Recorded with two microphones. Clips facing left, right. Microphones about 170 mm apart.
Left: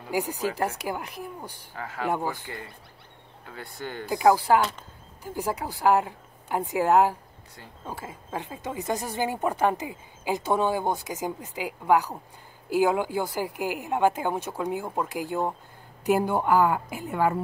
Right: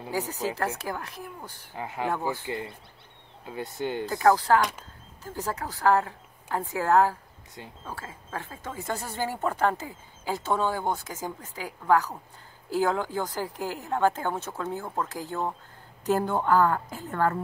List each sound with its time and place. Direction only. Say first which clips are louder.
0.1 s speech: left 3 dB; 15° left (ahead or behind)
1.7 s speech: left 1 dB; 20° right (ahead or behind)
4.1 s speech: left 2 dB; 15° left (ahead or behind)